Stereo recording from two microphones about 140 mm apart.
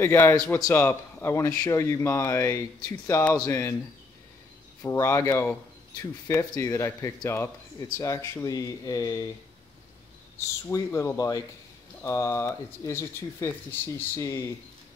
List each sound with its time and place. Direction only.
0.0 s speech: 15° left (ahead or behind)
4.8 s speech: 20° left (ahead or behind)
10.7 s speech: 20° left (ahead or behind)